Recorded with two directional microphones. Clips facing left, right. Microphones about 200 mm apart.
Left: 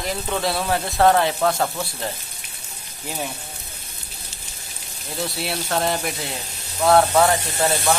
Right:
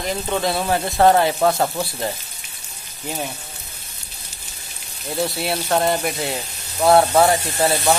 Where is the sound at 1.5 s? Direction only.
20° right (ahead or behind).